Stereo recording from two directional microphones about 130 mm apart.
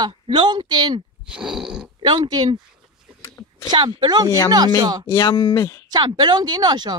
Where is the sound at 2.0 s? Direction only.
35° right (ahead or behind).